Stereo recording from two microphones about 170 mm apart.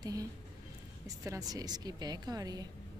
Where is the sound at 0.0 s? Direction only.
20° right (ahead or behind).